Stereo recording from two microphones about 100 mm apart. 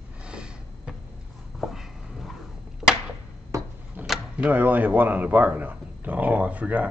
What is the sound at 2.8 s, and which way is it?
Arrow, 5° right (ahead or behind).